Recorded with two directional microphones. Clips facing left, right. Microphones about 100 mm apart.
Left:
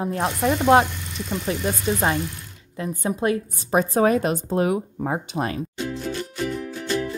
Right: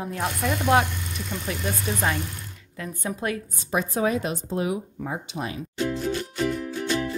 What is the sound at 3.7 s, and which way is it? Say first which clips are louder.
Speech: left 6 dB; 45° left (ahead or behind).